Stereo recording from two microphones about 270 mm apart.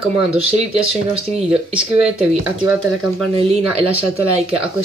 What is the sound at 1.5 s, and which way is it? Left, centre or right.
Speech, centre.